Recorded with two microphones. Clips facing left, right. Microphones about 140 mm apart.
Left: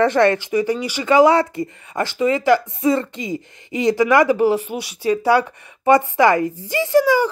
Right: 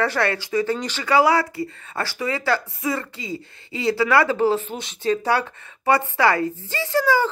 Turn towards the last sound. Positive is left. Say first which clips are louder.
# left 5 dB
turn(degrees=15)  # may be behind; listen again after turning